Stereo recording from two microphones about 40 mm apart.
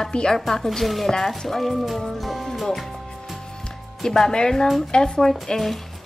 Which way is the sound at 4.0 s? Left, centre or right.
Centre.